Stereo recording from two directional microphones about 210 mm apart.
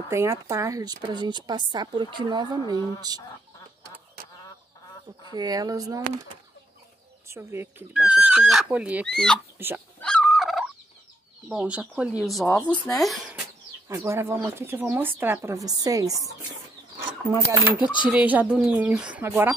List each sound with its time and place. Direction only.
0.1 s speech: 15° right (ahead or behind)
5.3 s speech: 20° right (ahead or behind)
7.2 s speech: 10° right (ahead or behind)
9.0 s speech: 5° left (ahead or behind)
9.6 s speech: 10° right (ahead or behind)
9.9 s fowl: 5° left (ahead or behind)
11.4 s speech: 5° right (ahead or behind)
12.4 s speech: 15° left (ahead or behind)
12.9 s speech: centre (ahead or behind)
13.8 s speech: 15° right (ahead or behind)
18.0 s speech: 5° right (ahead or behind)